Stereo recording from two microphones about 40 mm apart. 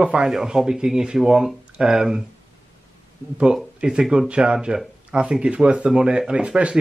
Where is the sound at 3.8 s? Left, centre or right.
Right.